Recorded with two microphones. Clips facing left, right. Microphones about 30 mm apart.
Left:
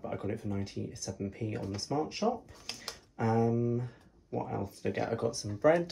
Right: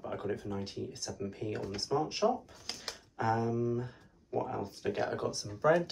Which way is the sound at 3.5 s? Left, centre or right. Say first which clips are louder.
Left 1 dB; right.